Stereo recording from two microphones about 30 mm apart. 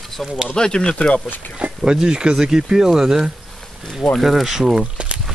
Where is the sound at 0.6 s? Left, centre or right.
Left.